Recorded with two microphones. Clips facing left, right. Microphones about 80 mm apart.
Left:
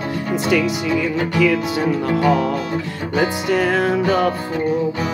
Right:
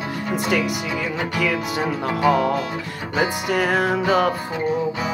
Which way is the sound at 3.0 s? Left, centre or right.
Centre.